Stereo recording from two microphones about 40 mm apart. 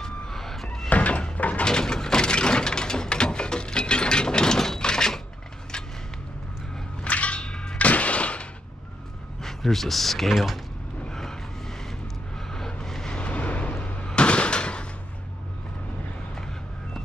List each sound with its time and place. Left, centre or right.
0.0 s a sound: centre
0.8 s door: left
1.6 s a sound: centre
7.1 s whip: left
7.8 s music: left
9.4 s speech: centre
11.1 s vehicle: centre
12.4 s vehicle: centre
13.3 s vehicle: left
14.0 s a sound: left